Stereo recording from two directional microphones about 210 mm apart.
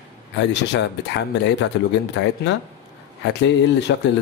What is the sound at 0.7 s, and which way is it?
Speech, 55° left (ahead or behind).